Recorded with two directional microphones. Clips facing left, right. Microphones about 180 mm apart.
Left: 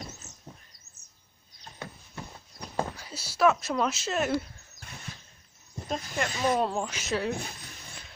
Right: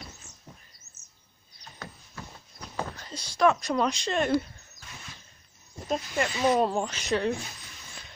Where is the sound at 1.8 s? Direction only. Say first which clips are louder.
Left 2 dB; 25° left (ahead or behind).